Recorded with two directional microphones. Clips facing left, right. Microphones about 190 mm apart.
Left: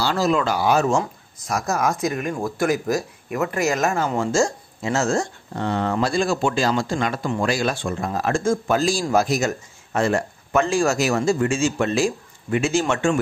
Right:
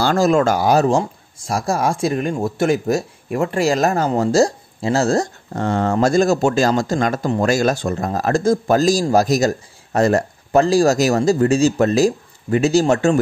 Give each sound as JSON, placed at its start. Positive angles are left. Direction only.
{"t": 0.0, "sound": "speech", "side_deg": -45}